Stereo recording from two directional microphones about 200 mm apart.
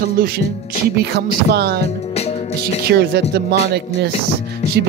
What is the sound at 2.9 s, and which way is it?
Speech, 55° right (ahead or behind).